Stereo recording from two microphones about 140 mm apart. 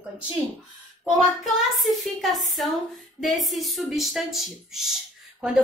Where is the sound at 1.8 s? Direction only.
Centre (ahead or behind).